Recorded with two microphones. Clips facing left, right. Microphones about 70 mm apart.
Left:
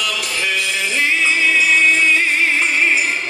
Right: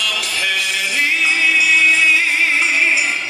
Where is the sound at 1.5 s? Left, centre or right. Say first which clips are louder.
Even; left.